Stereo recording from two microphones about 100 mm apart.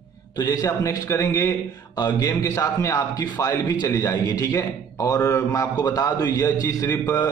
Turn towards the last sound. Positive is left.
turn(degrees=35)  # may be behind; listen again after turning